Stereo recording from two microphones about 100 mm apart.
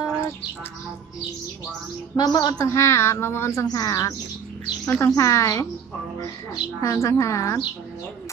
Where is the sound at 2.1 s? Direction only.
45° left (ahead or behind).